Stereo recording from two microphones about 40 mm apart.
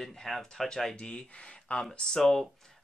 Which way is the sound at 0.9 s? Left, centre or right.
Left.